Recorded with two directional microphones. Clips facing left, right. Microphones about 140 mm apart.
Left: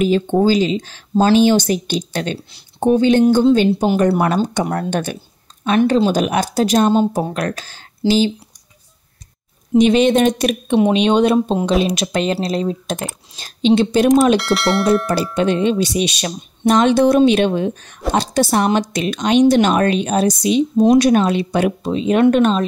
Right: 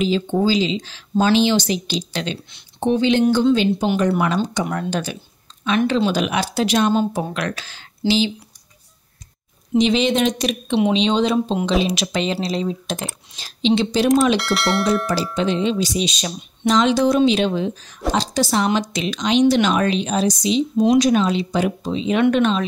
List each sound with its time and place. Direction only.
0.4 s speech: 50° left (ahead or behind)
9.8 s speech: 50° left (ahead or behind)
14.3 s speech: centre (ahead or behind)
15.3 s speech: 55° left (ahead or behind)
20.7 s speech: 45° left (ahead or behind)
21.0 s speech: 55° left (ahead or behind)